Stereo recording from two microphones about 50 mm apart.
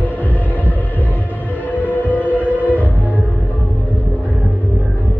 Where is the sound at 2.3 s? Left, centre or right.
Right.